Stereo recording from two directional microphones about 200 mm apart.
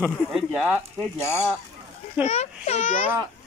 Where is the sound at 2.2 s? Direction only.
35° left (ahead or behind).